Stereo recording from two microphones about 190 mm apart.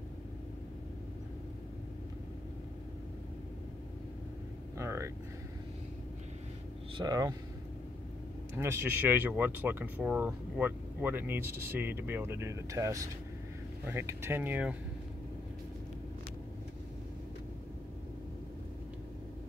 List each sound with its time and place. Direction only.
4.7 s vehicle: 15° right (ahead or behind)
7.0 s speech: 20° right (ahead or behind)
8.5 s speech: 15° right (ahead or behind)